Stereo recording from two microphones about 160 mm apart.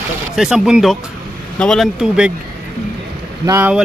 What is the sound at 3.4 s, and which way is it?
Speech, 20° right (ahead or behind).